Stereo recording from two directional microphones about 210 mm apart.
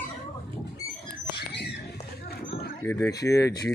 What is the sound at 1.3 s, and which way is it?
Rodents, 50° left (ahead or behind).